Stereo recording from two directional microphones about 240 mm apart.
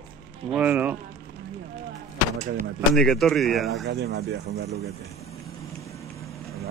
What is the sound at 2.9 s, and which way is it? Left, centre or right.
Speech, centre.